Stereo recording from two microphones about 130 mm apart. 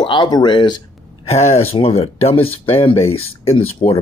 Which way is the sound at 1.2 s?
55° left (ahead or behind).